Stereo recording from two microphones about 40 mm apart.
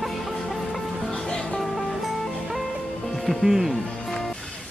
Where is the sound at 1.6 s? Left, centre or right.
Centre.